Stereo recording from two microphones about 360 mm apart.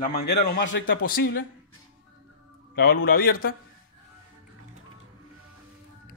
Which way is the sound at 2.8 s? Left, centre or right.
Left.